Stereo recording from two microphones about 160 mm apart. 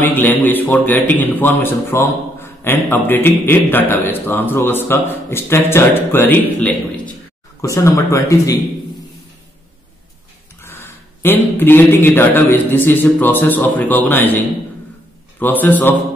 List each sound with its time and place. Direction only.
0.0 s a man's voice: 10° left (ahead or behind)
10.6 s a man's voice: 15° left (ahead or behind)